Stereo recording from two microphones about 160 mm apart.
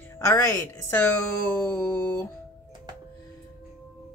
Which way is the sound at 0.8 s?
10° left (ahead or behind).